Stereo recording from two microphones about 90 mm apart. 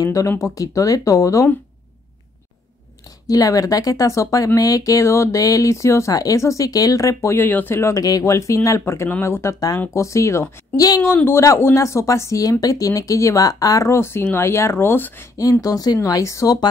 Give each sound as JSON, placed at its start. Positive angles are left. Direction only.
{"t": 0.0, "sound": "speech", "side_deg": 35}
{"t": 3.3, "sound": "speech", "side_deg": 40}
{"t": 7.4, "sound": "speech", "side_deg": 20}
{"t": 11.0, "sound": "speech", "side_deg": 25}
{"t": 15.6, "sound": "speech", "side_deg": 45}